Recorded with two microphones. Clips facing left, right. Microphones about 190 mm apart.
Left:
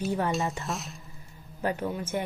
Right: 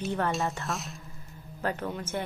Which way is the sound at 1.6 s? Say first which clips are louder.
Left 2 dB; 10° left (ahead or behind).